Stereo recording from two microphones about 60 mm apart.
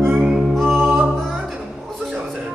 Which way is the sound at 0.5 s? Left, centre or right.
Centre.